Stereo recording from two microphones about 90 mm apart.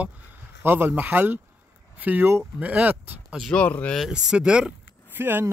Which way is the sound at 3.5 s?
15° left (ahead or behind).